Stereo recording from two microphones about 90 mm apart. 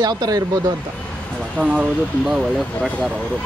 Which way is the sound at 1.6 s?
15° left (ahead or behind).